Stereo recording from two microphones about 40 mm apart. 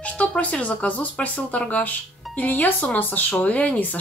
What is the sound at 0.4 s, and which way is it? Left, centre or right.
Speech, left.